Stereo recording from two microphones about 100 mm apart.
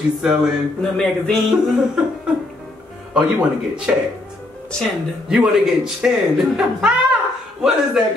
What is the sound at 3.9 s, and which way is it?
Speech, 15° right (ahead or behind).